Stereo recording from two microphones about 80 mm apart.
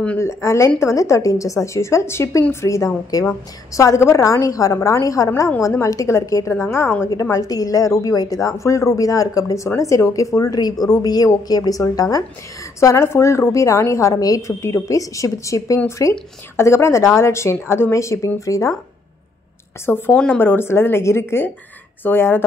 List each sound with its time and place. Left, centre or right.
0.2 s a woman's voice: left
7.1 s a woman's voice: left
12.9 s a woman's voice: left
19.9 s a woman's voice: left